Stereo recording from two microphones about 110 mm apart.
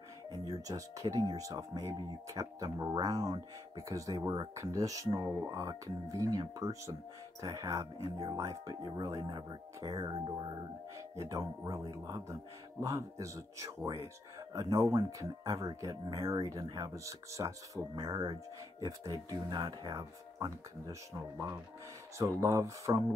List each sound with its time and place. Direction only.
0.3 s speech: 35° right (ahead or behind)
11.0 s speech: 30° right (ahead or behind)